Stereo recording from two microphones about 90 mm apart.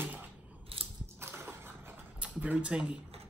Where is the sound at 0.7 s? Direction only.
90° right.